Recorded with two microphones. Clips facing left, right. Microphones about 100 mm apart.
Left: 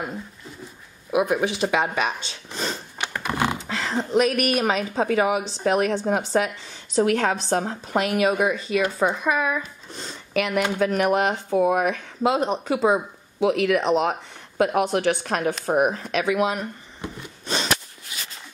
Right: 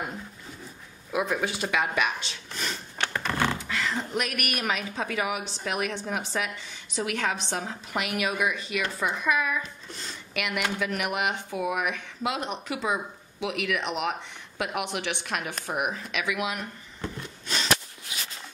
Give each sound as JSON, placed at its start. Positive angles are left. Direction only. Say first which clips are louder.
{"t": 1.1, "sound": "speech", "louder": "left 6 dB", "side_deg": 20}
{"t": 1.7, "sound": "speech", "louder": "left 4 dB", "side_deg": 35}
{"t": 3.0, "sound": "a sound", "louder": "left 2 dB", "side_deg": 10}
{"t": 3.5, "sound": "speech", "louder": "left 4 dB", "side_deg": 35}
{"t": 17.0, "sound": "wood", "louder": "left 1 dB", "side_deg": 15}